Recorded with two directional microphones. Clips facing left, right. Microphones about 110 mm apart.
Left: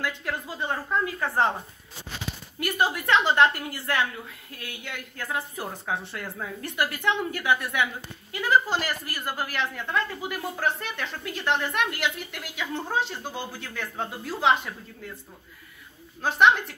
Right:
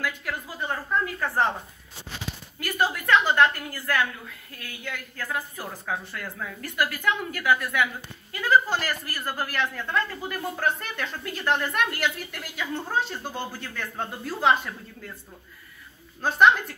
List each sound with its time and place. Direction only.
0.0 s speech: 20° left (ahead or behind)
2.6 s speech: 20° left (ahead or behind)
16.2 s a woman's voice: centre (ahead or behind)